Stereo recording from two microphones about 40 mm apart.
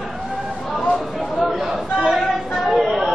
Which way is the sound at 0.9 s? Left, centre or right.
Centre.